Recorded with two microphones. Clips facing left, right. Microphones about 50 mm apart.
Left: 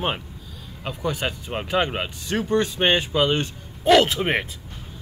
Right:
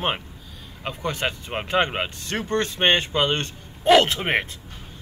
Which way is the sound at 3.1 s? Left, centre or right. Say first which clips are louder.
Left 2 dB; centre.